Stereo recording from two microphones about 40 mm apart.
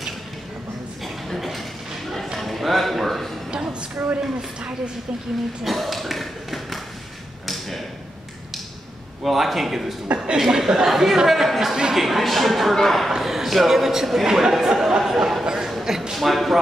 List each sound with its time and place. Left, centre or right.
1.0 s a sound: centre
3.5 s a sound: right
5.6 s speech: centre
9.2 s speech: centre
10.0 s a man's voice: right
10.3 s speech: centre
13.1 s a man's voice: centre
15.4 s a sound: centre
16.2 s speech: centre